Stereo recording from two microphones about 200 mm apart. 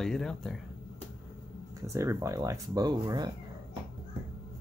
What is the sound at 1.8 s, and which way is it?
Speech, 15° right (ahead or behind).